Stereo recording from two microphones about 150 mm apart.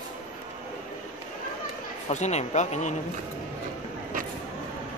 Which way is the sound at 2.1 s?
50° left (ahead or behind).